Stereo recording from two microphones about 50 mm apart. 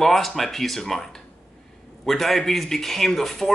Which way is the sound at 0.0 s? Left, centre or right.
Centre.